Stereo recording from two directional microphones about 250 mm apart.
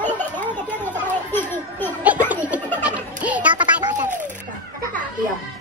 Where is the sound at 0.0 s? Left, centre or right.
Centre.